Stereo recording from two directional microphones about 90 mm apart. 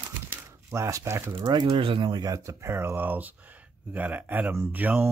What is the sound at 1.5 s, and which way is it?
Speech, 60° right (ahead or behind).